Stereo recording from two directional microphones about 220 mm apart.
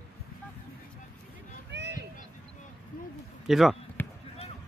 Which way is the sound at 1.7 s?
55° right (ahead or behind).